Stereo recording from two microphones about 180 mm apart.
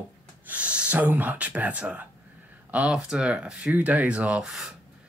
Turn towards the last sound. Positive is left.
turn(degrees=-5)  # may be behind; listen again after turning